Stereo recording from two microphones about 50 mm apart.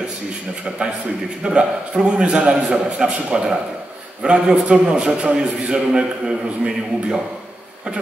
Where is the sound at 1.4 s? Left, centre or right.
Centre.